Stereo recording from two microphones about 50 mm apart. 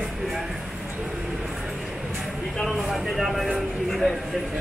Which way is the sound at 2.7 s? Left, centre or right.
Centre.